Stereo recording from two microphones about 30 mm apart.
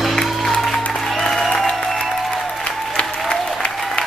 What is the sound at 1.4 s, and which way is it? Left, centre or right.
Applause, centre.